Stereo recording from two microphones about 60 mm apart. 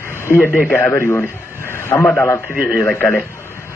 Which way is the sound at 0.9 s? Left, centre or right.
Left.